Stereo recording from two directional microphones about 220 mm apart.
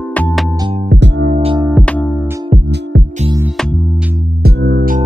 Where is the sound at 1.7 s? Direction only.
5° left (ahead or behind).